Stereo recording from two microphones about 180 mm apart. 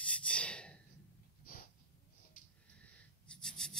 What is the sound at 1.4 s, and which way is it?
Snort, 55° left (ahead or behind).